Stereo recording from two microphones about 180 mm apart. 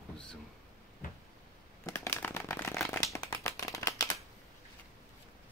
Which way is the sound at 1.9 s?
15° left (ahead or behind).